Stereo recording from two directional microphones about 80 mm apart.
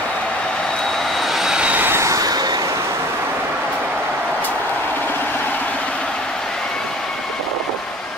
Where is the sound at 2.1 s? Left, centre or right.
Right.